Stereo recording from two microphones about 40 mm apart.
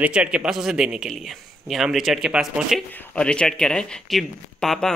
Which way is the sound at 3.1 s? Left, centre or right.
Left.